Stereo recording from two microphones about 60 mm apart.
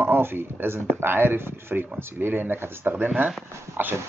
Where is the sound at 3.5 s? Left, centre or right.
Right.